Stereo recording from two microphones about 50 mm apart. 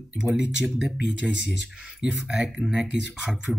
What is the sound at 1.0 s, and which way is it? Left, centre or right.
Speech, centre.